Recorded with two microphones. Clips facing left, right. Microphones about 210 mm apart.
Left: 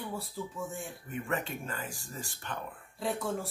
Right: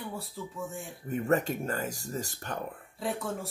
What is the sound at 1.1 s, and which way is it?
Speech, 40° right (ahead or behind).